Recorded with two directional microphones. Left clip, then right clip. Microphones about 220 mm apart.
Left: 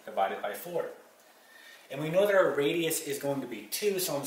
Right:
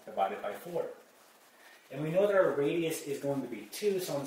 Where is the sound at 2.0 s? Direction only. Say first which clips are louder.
Left 2 dB; 10° right (ahead or behind).